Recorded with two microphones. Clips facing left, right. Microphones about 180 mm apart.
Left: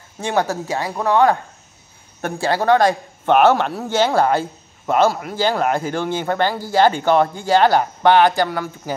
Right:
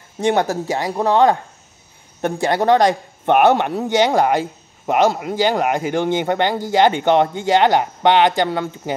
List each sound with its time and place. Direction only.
0.2 s speech: 20° right (ahead or behind)